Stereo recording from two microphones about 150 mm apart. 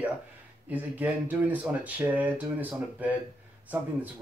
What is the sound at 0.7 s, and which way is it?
Speech, 10° right (ahead or behind).